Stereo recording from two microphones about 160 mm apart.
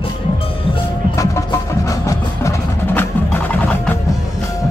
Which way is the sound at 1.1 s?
20° left (ahead or behind).